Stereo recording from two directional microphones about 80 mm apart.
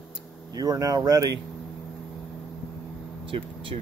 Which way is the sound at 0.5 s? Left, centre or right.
Right.